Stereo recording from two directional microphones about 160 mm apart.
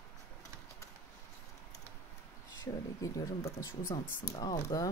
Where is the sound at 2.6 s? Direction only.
20° left (ahead or behind).